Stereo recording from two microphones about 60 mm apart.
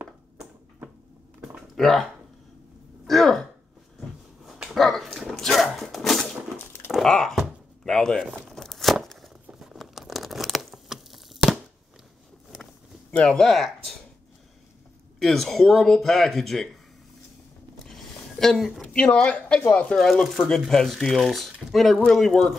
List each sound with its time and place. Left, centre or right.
1.8 s speech: centre
3.1 s speech: centre
4.7 s dog: centre
6.9 s a sound: centre
9.6 s tearing: centre
13.2 s speech: centre
15.1 s speech: centre
17.8 s a sound: centre
18.8 s speech: centre
20.0 s speech: centre